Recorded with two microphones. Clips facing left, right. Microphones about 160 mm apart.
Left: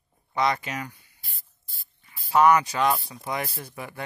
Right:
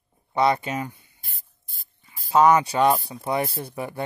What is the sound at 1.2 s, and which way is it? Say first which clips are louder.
Spray: right 1 dB; 50° right (ahead or behind).